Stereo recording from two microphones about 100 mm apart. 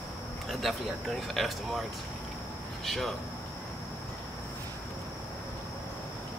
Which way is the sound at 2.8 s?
Centre (ahead or behind).